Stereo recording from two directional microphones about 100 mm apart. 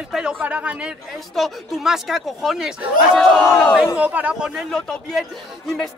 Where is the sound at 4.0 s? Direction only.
15° right (ahead or behind).